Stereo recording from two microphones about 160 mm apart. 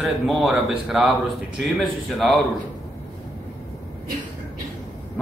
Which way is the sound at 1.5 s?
Centre (ahead or behind).